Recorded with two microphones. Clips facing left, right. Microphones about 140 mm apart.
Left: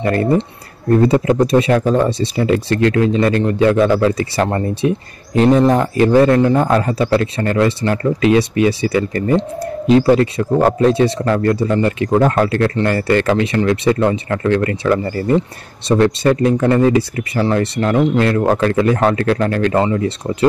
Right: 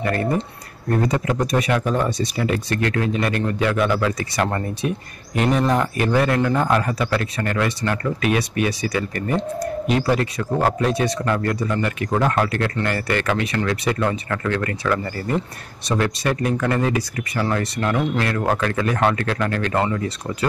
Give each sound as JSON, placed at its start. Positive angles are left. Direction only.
{"t": 0.0, "sound": "speech", "side_deg": 30}